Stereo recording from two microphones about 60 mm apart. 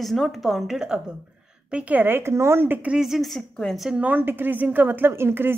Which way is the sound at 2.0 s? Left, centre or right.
Right.